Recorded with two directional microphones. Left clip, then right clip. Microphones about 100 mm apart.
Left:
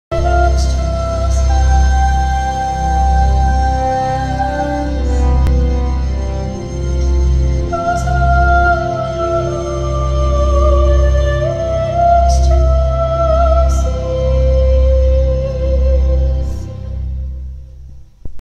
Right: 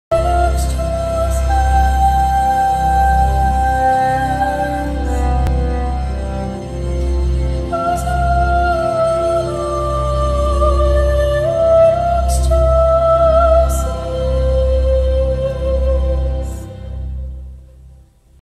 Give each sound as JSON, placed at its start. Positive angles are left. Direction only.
{"t": 0.1, "sound": "music", "side_deg": 30}